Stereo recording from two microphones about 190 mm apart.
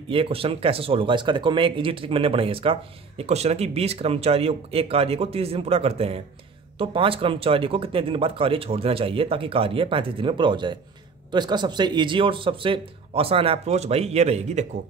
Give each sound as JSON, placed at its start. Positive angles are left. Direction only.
{"t": 0.1, "sound": "speech", "side_deg": -30}